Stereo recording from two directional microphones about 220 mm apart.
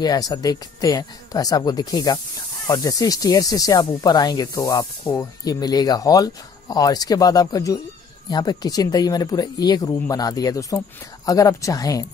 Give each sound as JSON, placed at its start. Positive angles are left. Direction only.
{"t": 0.0, "sound": "speech", "side_deg": 15}